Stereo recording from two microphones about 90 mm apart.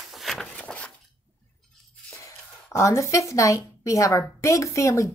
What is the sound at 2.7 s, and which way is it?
A woman's voice, 35° left (ahead or behind).